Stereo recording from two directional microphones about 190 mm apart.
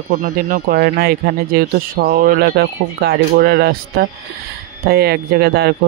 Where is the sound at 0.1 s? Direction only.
45° right (ahead or behind).